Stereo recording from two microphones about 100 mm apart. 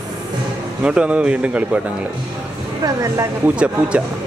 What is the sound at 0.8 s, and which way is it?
Speech, 10° right (ahead or behind).